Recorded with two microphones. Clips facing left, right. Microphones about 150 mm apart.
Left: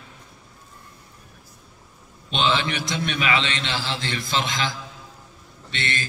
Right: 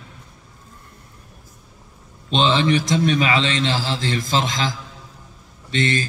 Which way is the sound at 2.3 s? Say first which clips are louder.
Right 6 dB; 35° right (ahead or behind).